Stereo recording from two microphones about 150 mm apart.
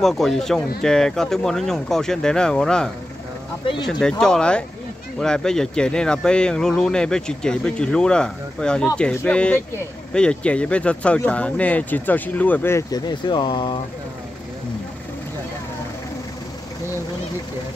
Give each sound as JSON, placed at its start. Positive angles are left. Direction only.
{"t": 0.0, "sound": "speech", "side_deg": 0}